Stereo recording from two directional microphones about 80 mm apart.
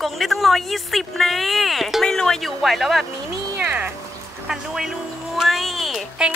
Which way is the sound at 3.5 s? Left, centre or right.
Right.